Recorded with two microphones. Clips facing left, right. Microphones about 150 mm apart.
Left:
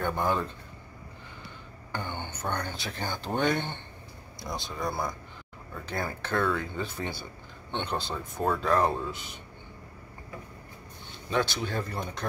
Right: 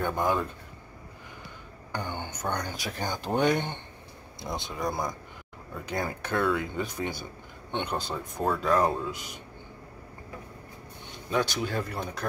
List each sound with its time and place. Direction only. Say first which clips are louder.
0.0 s speech: right 1 dB; 10° right (ahead or behind)
1.9 s speech: right 1 dB; 15° right (ahead or behind)
5.9 s speech: right 1 dB; 15° right (ahead or behind)
8.4 s speech: right 1 dB; centre (ahead or behind)
11.2 s speech: right 1 dB; 5° right (ahead or behind)